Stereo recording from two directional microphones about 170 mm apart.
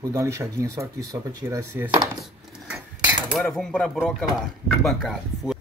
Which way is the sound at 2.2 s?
5° right (ahead or behind).